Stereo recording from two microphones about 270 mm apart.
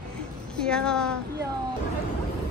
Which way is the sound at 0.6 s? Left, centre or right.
Centre.